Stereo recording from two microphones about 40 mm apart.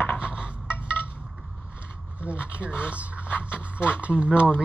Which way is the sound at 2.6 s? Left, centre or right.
Left.